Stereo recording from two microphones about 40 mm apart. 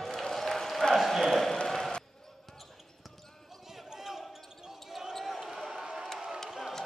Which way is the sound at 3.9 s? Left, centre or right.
Centre.